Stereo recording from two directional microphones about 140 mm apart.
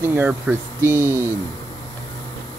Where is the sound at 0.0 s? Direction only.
15° right (ahead or behind).